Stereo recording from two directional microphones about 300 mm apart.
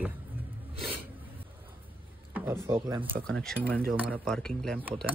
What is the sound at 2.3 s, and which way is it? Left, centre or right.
Speech, centre.